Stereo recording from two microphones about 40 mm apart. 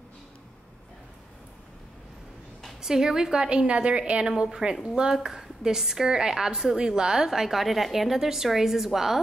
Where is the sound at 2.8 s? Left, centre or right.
Centre.